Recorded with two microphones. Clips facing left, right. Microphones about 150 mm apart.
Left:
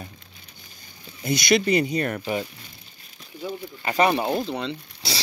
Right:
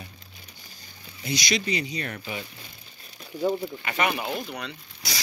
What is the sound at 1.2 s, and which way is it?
Speech, 55° left (ahead or behind).